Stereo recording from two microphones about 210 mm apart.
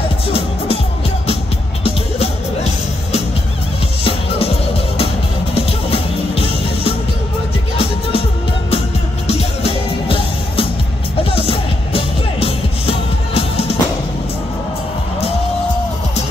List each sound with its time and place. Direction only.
2.1 s music: 30° left (ahead or behind)
9.3 s music: 30° left (ahead or behind)